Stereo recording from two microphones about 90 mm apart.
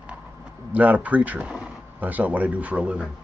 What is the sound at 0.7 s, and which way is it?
Speech, 15° right (ahead or behind).